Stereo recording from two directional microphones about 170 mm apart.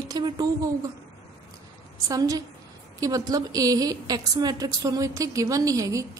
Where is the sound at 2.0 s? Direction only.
20° right (ahead or behind).